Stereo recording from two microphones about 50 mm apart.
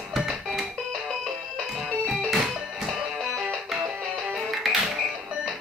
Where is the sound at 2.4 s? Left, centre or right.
Centre.